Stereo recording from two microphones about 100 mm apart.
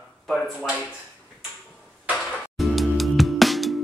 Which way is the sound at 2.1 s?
Centre (ahead or behind).